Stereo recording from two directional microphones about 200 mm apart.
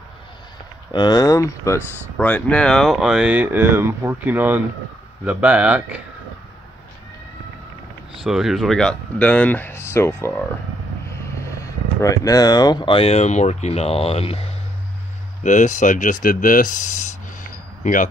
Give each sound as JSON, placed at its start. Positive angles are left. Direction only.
{"t": 0.9, "sound": "speech", "side_deg": 20}
{"t": 8.2, "sound": "speech", "side_deg": 0}